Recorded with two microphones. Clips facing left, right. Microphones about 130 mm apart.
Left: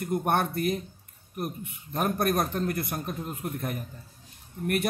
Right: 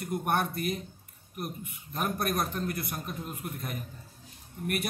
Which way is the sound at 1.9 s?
45° left (ahead or behind).